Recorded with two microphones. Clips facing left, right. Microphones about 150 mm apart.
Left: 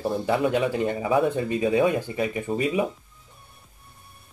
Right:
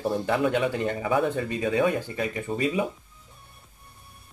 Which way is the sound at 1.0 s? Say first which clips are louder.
Left 2 dB; 25° left (ahead or behind).